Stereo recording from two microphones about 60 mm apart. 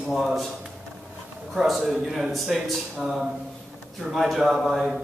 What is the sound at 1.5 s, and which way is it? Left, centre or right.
A man's voice, centre.